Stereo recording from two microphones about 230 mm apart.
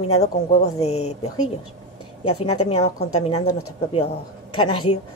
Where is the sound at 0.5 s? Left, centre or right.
Left.